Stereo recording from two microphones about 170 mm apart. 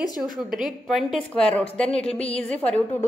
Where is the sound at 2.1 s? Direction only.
35° left (ahead or behind).